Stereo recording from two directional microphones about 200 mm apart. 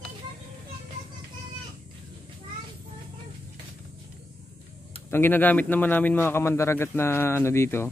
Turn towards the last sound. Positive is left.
turn(degrees=10)  # may be behind; listen again after turning